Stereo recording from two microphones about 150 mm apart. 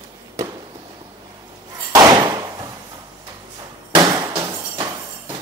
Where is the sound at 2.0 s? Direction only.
25° right (ahead or behind).